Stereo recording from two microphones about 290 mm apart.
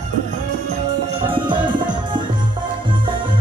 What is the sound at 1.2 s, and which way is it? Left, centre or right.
Music, centre.